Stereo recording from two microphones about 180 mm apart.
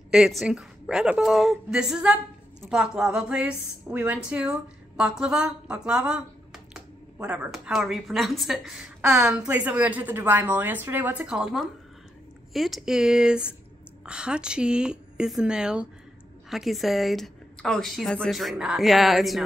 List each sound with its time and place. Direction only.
0.1 s a woman's voice: centre (ahead or behind)
9.0 s a woman's voice: 15° right (ahead or behind)
9.3 s a woman's voice: 5° right (ahead or behind)